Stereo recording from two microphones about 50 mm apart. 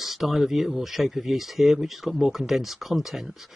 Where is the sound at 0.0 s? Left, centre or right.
Centre.